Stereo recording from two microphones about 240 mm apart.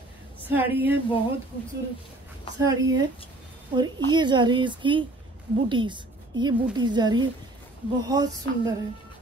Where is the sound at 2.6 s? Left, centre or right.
Centre.